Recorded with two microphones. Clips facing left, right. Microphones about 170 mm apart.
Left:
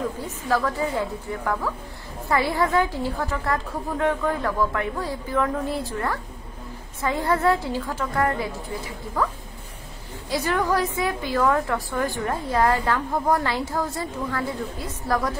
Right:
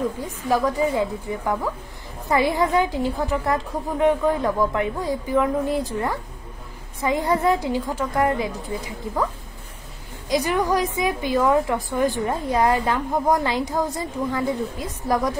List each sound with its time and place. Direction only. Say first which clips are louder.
0.5 s a woman's voice: right 3 dB; 15° right (ahead or behind)
10.3 s a woman's voice: right 2 dB; 15° right (ahead or behind)